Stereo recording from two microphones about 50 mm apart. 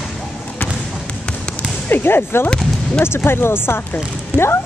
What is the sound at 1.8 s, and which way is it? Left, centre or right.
Speech, left.